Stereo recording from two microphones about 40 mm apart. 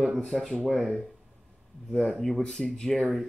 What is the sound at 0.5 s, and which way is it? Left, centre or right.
Speech, centre.